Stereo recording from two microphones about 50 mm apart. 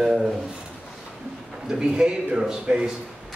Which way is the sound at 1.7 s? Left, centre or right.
Centre.